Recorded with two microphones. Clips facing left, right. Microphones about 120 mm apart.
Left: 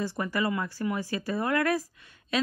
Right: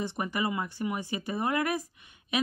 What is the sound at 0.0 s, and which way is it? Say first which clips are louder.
Speech: left 2 dB; 20° right (ahead or behind).